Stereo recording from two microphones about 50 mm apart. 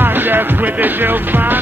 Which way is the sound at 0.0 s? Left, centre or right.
Right.